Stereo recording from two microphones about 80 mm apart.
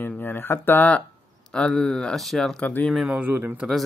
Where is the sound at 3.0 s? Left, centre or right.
Right.